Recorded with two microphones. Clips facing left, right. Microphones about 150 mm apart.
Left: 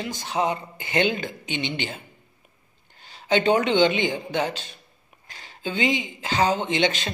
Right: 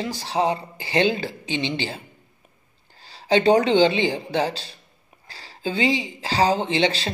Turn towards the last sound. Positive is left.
turn(degrees=-30)  # may be behind; listen again after turning